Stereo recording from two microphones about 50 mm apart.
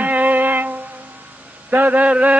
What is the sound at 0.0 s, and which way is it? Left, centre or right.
Music, right.